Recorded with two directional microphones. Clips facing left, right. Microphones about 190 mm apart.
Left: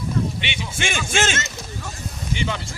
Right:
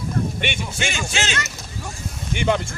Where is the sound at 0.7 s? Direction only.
50° left (ahead or behind).